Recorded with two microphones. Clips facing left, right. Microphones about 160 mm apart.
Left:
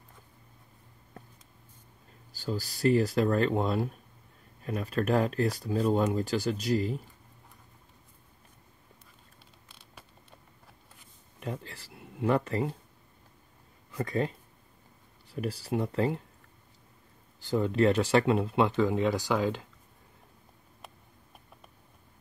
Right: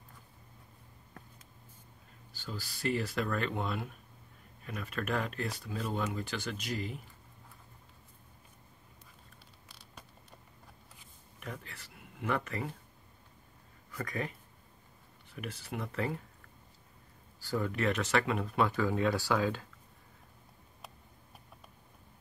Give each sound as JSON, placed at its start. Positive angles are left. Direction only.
{"t": 2.3, "sound": "speech", "side_deg": 40}
{"t": 11.3, "sound": "speech", "side_deg": 30}
{"t": 13.9, "sound": "speech", "side_deg": 30}
{"t": 17.4, "sound": "speech", "side_deg": 20}